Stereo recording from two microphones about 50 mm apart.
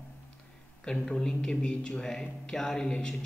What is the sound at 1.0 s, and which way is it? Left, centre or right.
Speech, centre.